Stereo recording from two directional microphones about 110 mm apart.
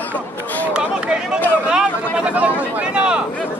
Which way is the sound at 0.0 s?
15° left (ahead or behind).